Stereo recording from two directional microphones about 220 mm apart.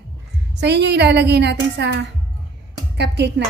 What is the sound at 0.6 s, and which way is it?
A woman's voice, 50° right (ahead or behind).